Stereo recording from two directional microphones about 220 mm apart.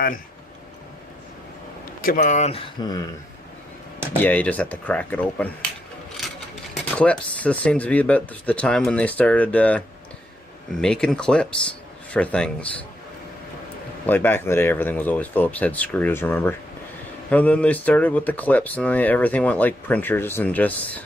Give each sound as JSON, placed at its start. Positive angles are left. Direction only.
{"t": 2.0, "sound": "speech", "side_deg": 35}
{"t": 4.1, "sound": "speech", "side_deg": 10}
{"t": 6.7, "sound": "speech", "side_deg": 5}
{"t": 14.0, "sound": "speech", "side_deg": 10}